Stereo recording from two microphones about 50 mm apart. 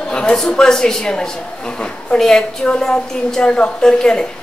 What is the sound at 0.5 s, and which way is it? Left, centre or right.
A woman's voice, centre.